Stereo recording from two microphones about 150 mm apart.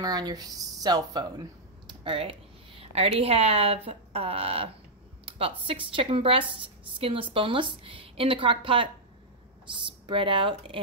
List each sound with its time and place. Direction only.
0.0 s a woman's voice: 25° right (ahead or behind)